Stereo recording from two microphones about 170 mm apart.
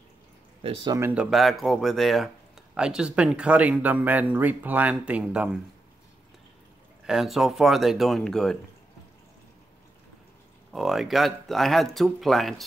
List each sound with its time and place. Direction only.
0.7 s speech: 30° right (ahead or behind)
0.9 s speech: 10° right (ahead or behind)
7.1 s speech: centre (ahead or behind)
10.7 s speech: centre (ahead or behind)